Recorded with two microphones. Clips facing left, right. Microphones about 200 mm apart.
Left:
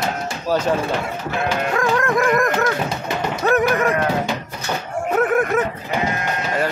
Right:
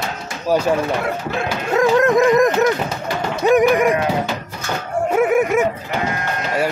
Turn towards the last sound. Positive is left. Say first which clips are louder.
# right 2 dB
turn(degrees=-10)  # may be behind; listen again after turning